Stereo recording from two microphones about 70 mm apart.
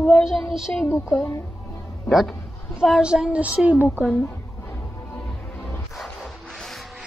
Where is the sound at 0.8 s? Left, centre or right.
Left.